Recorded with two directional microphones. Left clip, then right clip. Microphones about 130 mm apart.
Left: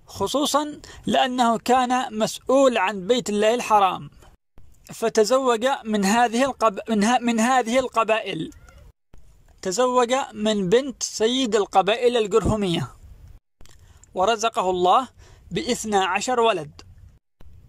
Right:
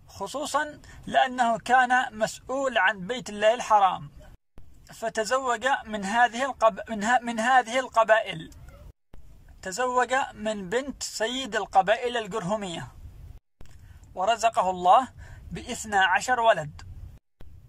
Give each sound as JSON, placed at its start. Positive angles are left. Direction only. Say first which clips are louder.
{"t": 0.1, "sound": "speech", "louder": "left 7 dB", "side_deg": 25}
{"t": 9.6, "sound": "speech", "louder": "left 5 dB", "side_deg": 25}
{"t": 14.1, "sound": "speech", "louder": "left 2 dB", "side_deg": 25}